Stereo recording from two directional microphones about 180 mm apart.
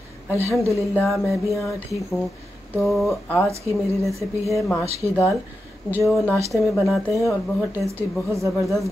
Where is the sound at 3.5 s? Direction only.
15° right (ahead or behind).